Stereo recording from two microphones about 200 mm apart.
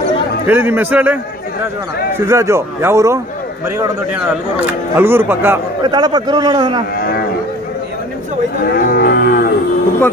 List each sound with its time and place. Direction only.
0.5 s speech: 10° right (ahead or behind)
5.9 s a man's voice: 20° right (ahead or behind)
8.7 s livestock: 50° left (ahead or behind)